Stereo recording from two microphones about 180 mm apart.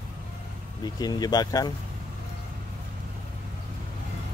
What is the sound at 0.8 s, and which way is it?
Speech, 20° left (ahead or behind).